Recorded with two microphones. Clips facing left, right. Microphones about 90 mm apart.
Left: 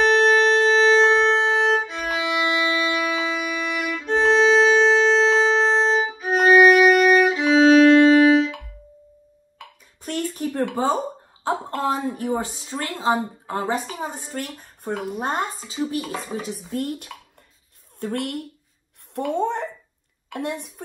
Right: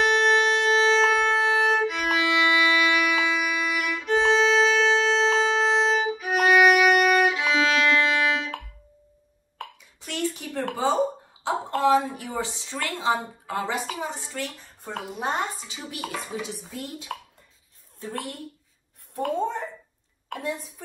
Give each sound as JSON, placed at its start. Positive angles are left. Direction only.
{"t": 0.0, "sound": "wind instrument", "side_deg": 40}
{"t": 1.8, "sound": "music", "side_deg": 20}
{"t": 10.0, "sound": "a sound", "side_deg": 40}
{"t": 11.4, "sound": "a woman's voice", "side_deg": 40}
{"t": 16.7, "sound": "a child's voice", "side_deg": 50}
{"t": 17.9, "sound": "a woman's voice", "side_deg": 60}
{"t": 19.4, "sound": "a sound", "side_deg": 60}
{"t": 20.3, "sound": "a woman's voice", "side_deg": 60}